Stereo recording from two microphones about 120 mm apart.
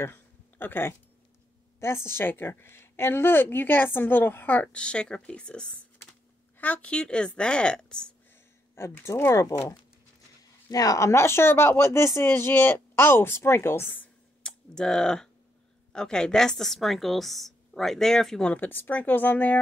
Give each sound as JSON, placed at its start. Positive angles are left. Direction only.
{"t": 0.0, "sound": "a sound", "side_deg": 15}
{"t": 1.8, "sound": "a woman's voice", "side_deg": 20}
{"t": 8.7, "sound": "speech", "side_deg": 20}
{"t": 10.7, "sound": "a woman's voice", "side_deg": 30}